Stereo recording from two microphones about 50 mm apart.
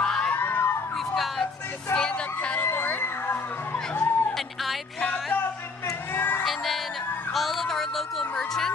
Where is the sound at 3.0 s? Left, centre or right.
Left.